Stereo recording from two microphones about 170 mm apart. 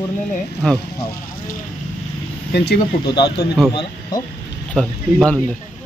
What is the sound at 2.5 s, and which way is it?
Speech, 75° left (ahead or behind).